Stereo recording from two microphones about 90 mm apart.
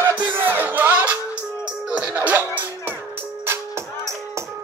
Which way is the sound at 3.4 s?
30° right (ahead or behind).